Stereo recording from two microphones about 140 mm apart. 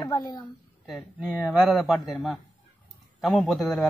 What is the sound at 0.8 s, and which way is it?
A man's voice, centre (ahead or behind).